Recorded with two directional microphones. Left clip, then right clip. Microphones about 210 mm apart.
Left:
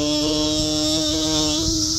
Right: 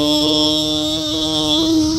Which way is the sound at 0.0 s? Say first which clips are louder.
Right 6 dB; 15° right (ahead or behind).